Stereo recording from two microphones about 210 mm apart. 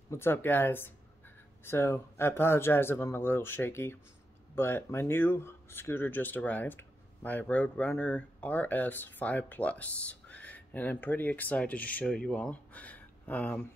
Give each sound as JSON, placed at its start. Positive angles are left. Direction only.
{"t": 0.1, "sound": "speech", "side_deg": 10}